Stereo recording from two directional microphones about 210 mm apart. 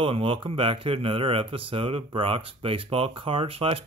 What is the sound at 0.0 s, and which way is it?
Speech, 25° right (ahead or behind).